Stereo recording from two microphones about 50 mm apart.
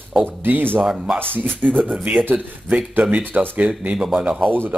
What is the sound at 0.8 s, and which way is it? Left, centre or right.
Speech, centre.